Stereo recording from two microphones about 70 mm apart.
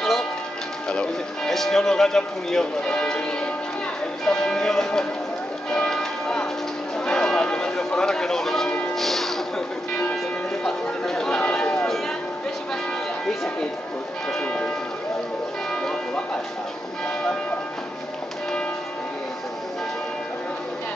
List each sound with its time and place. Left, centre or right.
0.0 s music: centre
0.8 s speech: centre
5.7 s music: centre
7.1 s a sound: centre
8.9 s music: centre
10.6 s speech: centre
14.4 s speech: centre
15.7 s church bell: centre